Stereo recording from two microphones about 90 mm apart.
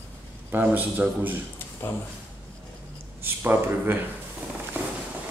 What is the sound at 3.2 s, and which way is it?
Speech, 25° right (ahead or behind).